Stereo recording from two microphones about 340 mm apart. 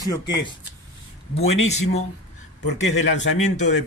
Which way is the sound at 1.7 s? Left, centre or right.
Centre.